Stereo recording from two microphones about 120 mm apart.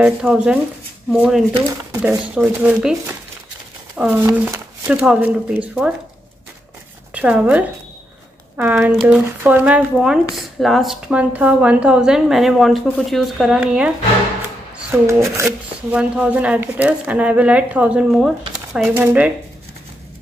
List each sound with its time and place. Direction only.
0.0 s a woman's voice: 5° right (ahead or behind)
4.1 s speech: 20° right (ahead or behind)
7.2 s speech: 10° right (ahead or behind)
9.9 s a woman's voice: 5° right (ahead or behind)
14.9 s speech: 25° right (ahead or behind)
15.9 s speech: 10° right (ahead or behind)